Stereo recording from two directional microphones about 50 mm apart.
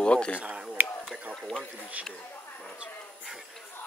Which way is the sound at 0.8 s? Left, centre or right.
Right.